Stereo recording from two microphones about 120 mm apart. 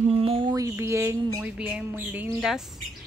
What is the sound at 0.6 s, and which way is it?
Speech, 25° right (ahead or behind).